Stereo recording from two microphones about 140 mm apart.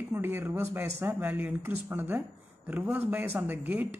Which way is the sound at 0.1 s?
15° right (ahead or behind).